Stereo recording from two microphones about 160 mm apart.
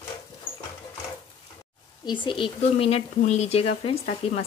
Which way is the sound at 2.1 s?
30° left (ahead or behind).